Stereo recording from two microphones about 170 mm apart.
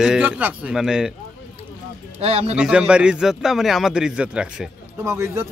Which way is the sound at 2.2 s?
35° right (ahead or behind).